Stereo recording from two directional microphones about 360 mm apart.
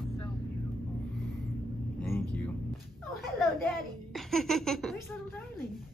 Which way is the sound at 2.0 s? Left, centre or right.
Centre.